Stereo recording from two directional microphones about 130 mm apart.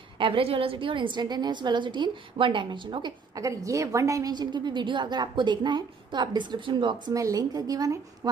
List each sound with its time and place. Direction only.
0.2 s a woman's voice: 45° right (ahead or behind)
3.3 s a woman's voice: 25° right (ahead or behind)
7.2 s a woman's voice: 25° right (ahead or behind)